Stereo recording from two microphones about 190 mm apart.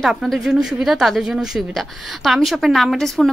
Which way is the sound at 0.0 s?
Centre (ahead or behind).